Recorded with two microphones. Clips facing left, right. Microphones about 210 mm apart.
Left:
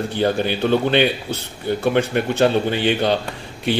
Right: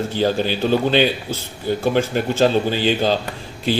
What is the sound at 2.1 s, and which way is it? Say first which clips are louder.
Speech: even; 65° left (ahead or behind).